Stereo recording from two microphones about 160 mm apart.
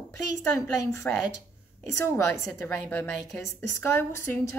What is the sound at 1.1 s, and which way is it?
Speech, 10° left (ahead or behind).